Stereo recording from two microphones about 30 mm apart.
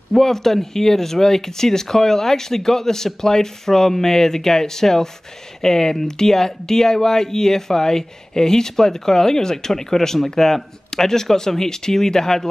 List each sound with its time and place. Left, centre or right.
0.1 s speech: centre